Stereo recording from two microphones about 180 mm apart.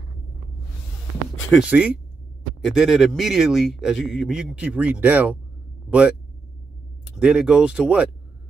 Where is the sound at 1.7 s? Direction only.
10° right (ahead or behind).